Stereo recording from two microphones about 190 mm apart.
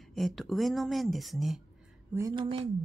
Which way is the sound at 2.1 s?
15° right (ahead or behind).